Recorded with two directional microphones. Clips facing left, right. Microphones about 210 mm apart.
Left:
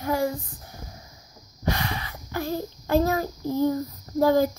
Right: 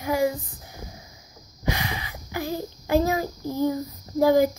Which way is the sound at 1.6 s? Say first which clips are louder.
Left 1 dB; 15° right (ahead or behind).